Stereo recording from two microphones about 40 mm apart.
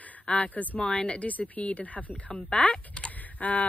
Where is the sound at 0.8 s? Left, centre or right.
Left.